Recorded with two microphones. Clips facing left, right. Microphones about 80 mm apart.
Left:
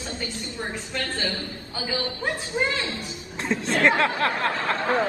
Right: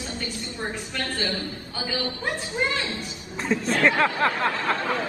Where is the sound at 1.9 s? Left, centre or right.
Left.